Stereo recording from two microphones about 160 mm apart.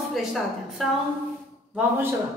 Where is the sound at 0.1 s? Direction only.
Centre (ahead or behind).